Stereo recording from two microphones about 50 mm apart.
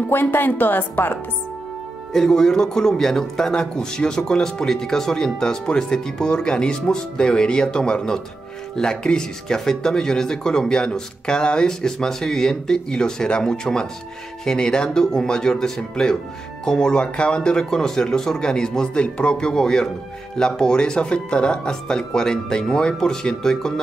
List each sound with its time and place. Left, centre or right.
0.1 s speech: left
2.1 s a man's voice: centre